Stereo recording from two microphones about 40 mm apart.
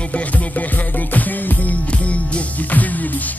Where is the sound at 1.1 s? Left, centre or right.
Left.